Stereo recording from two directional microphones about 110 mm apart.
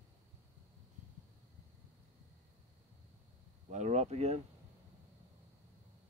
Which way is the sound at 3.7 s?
90° right.